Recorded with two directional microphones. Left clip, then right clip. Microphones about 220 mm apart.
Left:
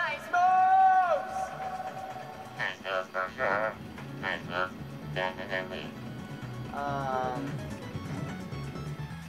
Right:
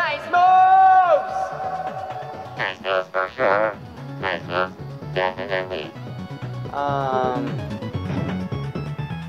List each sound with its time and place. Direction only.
0.0 s a sound: 55° right (ahead or behind)
2.6 s speech: 55° right (ahead or behind)
5.1 s music: 55° right (ahead or behind)
8.1 s music: 40° right (ahead or behind)